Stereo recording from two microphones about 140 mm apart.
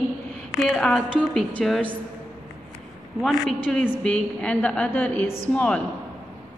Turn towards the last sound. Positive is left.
turn(degrees=10)  # may be behind; listen again after turning